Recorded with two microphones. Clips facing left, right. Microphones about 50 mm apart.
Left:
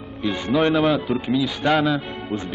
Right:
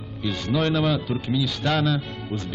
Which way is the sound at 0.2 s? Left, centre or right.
Left.